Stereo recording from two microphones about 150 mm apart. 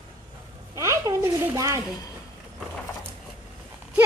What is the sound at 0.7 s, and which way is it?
Speech, 20° right (ahead or behind).